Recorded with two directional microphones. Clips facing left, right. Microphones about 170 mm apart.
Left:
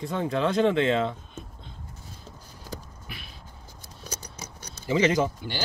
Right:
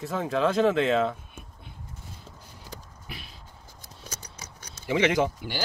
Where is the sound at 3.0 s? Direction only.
35° right (ahead or behind).